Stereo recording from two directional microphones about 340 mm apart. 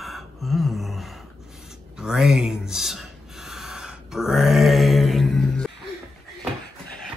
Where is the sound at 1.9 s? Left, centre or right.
Centre.